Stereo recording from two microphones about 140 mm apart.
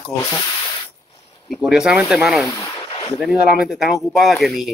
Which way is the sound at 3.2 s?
5° right (ahead or behind).